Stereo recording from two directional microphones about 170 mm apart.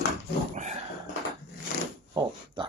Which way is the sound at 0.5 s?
45° right (ahead or behind).